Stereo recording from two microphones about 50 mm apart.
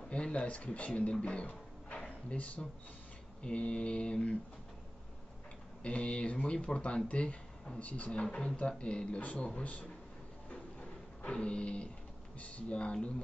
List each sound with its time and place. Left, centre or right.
0.1 s speech: left
1.2 s music: left
2.0 s speech: left
5.8 s speech: left
10.5 s music: centre
12.4 s speech: left